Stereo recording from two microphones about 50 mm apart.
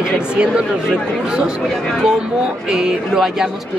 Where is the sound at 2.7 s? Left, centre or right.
Centre.